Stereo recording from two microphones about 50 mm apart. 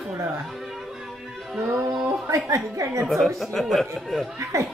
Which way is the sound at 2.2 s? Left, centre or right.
Right.